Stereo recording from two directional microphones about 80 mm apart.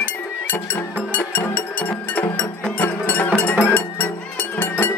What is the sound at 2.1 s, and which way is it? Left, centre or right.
Music, left.